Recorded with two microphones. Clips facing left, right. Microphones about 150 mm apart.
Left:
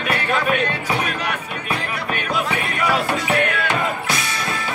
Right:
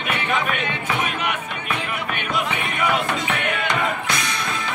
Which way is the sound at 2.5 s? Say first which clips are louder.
Left 1 dB; 35° left (ahead or behind).